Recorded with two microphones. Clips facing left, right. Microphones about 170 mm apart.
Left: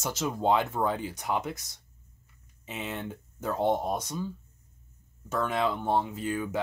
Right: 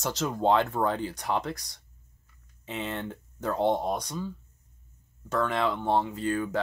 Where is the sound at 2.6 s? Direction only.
10° left (ahead or behind).